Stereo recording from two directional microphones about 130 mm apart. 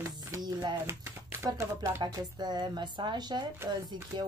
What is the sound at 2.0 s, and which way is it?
Speech, 30° right (ahead or behind).